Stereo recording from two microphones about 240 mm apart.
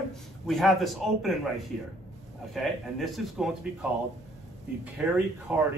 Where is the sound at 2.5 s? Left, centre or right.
Centre.